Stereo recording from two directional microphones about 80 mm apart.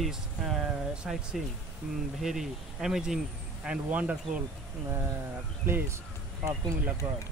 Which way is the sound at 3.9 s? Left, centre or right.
Centre.